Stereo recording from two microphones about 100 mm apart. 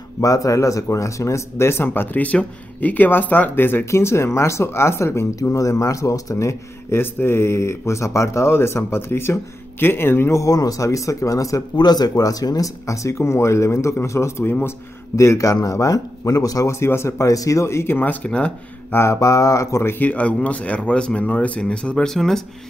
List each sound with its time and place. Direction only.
0.2 s speech: 35° left (ahead or behind); by 18.9 s 15° left (ahead or behind)
18.9 s speech: 30° left (ahead or behind); by 22.4 s 5° left (ahead or behind)